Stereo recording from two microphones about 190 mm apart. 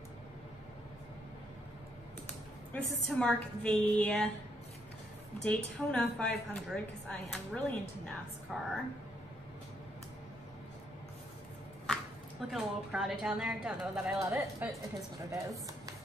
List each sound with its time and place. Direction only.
2.7 s a woman's voice: 5° left (ahead or behind)
5.4 s a woman's voice: 5° left (ahead or behind)
12.4 s a woman's voice: centre (ahead or behind)
14.2 s speech: 15° right (ahead or behind)